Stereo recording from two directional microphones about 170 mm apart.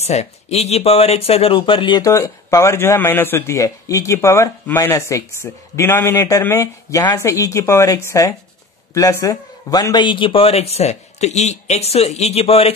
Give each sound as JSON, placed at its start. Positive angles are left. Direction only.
{"t": 0.0, "sound": "a man's voice", "side_deg": 40}